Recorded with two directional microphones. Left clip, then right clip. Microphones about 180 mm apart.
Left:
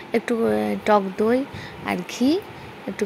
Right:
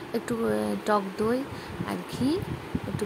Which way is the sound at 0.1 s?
15° left (ahead or behind).